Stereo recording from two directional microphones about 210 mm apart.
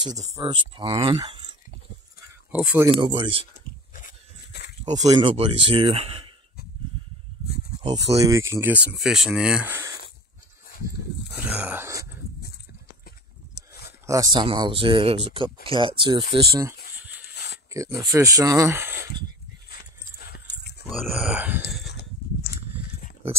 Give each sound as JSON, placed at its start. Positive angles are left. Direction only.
{"t": 0.2, "sound": "speech", "side_deg": -25}
{"t": 2.5, "sound": "speech", "side_deg": -5}
{"t": 3.0, "sound": "speech", "side_deg": -25}
{"t": 3.9, "sound": "a sound", "side_deg": 45}
{"t": 5.0, "sound": "speech", "side_deg": -25}
{"t": 7.9, "sound": "speech", "side_deg": -20}
{"t": 11.3, "sound": "speech", "side_deg": -5}
{"t": 14.0, "sound": "speech", "side_deg": -15}
{"t": 17.3, "sound": "a sound", "side_deg": 50}
{"t": 17.7, "sound": "speech", "side_deg": -15}
{"t": 20.2, "sound": "clip-clop", "side_deg": 50}
{"t": 20.9, "sound": "speech", "side_deg": 0}
{"t": 21.8, "sound": "a sound", "side_deg": 50}